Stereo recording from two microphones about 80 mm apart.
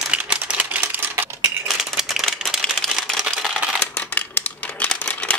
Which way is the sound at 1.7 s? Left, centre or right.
Centre.